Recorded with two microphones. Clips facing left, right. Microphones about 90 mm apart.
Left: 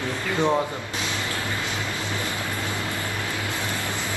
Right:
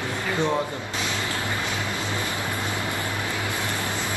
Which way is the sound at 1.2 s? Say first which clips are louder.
Right 1 dB; 20° right (ahead or behind).